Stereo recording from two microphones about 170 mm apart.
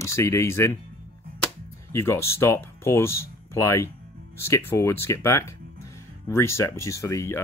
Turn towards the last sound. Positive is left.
turn(degrees=20)  # may be behind; listen again after turning